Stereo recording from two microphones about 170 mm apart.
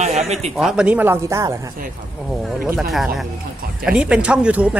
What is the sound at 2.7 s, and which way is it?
A woman's voice, centre (ahead or behind).